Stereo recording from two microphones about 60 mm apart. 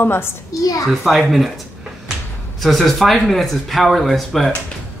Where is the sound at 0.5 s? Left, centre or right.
Left.